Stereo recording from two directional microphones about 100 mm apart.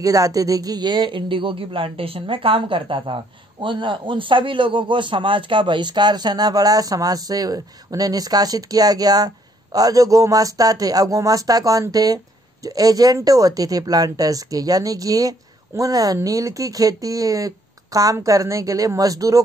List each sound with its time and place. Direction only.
0.0 s a man's voice: 35° right (ahead or behind)